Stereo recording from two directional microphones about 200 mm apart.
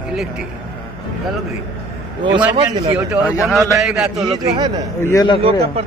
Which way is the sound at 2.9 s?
5° right (ahead or behind).